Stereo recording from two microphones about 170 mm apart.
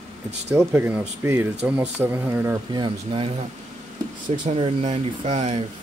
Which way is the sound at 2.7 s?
30° right (ahead or behind).